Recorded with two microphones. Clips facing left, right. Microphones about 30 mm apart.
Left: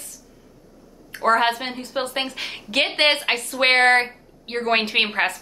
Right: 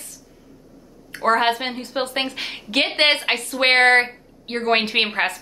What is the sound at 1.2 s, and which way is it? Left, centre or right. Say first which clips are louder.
A woman's voice: even; centre.